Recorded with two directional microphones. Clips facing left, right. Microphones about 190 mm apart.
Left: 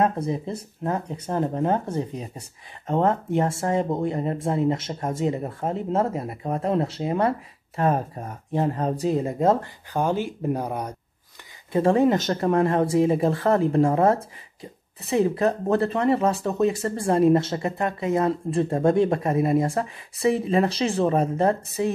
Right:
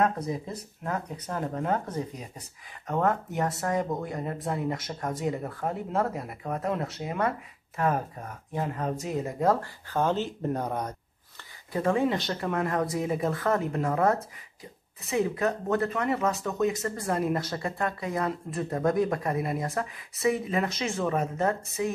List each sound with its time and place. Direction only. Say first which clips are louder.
0.0 s speech: left 4 dB; 30° left (ahead or behind); by 11.0 s 10° left (ahead or behind)
11.7 s speech: left 6 dB; 30° left (ahead or behind)